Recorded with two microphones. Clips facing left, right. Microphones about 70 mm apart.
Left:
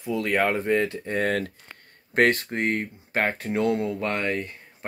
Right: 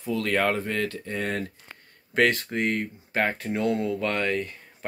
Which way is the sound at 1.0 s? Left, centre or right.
Left.